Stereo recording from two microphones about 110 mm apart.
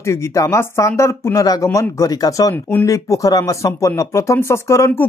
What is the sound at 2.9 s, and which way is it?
Speech, 30° left (ahead or behind).